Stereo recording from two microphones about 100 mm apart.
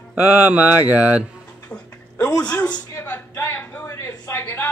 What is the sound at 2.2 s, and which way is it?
Speech, 10° left (ahead or behind).